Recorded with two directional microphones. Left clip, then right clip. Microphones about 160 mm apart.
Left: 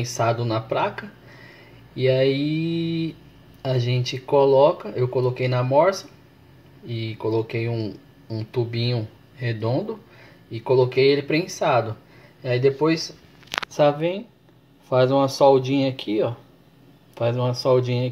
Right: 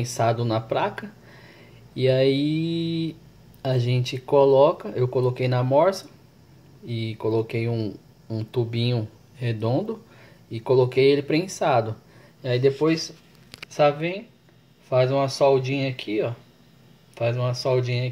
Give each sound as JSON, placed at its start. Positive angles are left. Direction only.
{"t": 0.0, "sound": "speech", "side_deg": -10}
{"t": 13.9, "sound": "speech", "side_deg": 15}
{"t": 15.2, "sound": "speech", "side_deg": 15}